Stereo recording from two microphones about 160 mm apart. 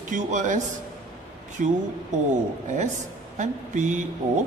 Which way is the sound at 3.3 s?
50° right (ahead or behind).